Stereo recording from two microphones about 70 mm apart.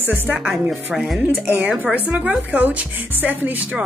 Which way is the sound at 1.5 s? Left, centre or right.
Right.